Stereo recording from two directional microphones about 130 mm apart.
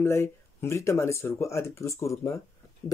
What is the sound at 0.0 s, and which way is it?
Speech, 20° left (ahead or behind).